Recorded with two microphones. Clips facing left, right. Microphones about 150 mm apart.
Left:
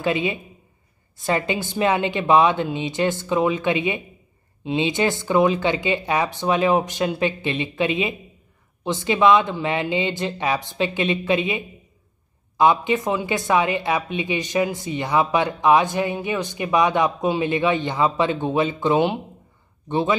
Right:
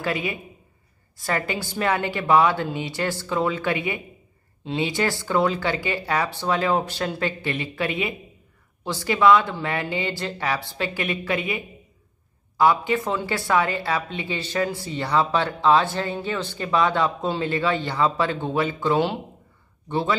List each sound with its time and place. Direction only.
0.0 s speech: 20° left (ahead or behind)